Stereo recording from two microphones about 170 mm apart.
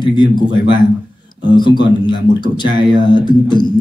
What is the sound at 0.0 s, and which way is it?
Speech, 25° left (ahead or behind).